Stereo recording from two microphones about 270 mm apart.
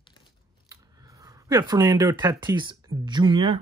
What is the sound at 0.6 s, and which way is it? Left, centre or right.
Speech, centre.